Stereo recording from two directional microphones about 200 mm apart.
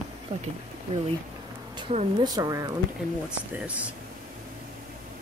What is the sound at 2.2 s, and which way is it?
Speech, 20° right (ahead or behind).